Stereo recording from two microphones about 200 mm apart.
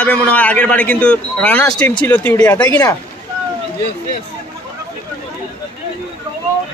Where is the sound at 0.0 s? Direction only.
5° left (ahead or behind).